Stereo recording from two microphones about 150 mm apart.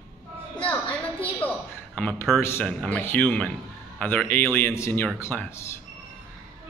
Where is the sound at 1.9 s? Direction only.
10° left (ahead or behind).